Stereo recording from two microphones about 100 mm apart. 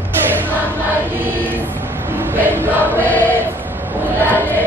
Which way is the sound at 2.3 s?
20° right (ahead or behind).